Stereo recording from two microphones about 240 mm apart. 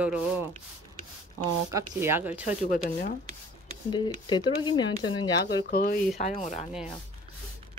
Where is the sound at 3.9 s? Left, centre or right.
Centre.